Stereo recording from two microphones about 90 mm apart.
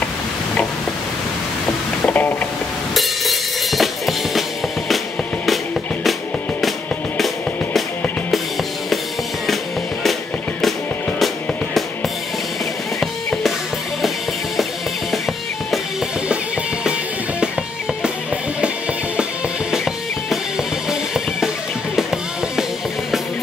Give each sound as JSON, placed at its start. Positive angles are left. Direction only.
{"t": 2.0, "sound": "a sound", "side_deg": 20}
{"t": 2.9, "sound": "music", "side_deg": 0}
{"t": 13.0, "sound": "music", "side_deg": 5}
{"t": 19.7, "sound": "music", "side_deg": 0}